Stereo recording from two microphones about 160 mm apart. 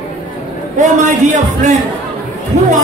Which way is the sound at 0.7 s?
50° right (ahead or behind).